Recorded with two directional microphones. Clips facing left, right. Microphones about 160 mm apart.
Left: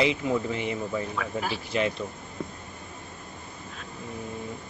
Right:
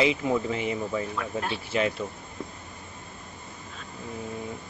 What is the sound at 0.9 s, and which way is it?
Speech, centre (ahead or behind).